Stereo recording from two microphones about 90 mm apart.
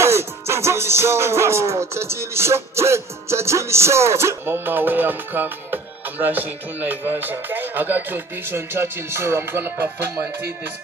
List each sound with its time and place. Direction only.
0.0 s music: 30° right (ahead or behind)